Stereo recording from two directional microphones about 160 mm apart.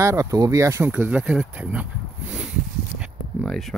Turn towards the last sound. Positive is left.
turn(degrees=0)  # may be behind; listen again after turning